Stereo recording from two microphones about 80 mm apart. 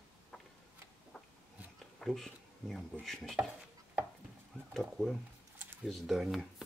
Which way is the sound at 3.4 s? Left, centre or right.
Right.